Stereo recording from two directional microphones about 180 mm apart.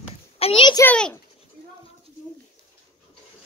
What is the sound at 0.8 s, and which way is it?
Speech, 5° left (ahead or behind).